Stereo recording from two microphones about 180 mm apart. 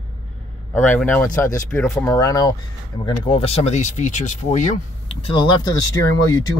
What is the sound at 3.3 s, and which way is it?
Speech, 30° left (ahead or behind).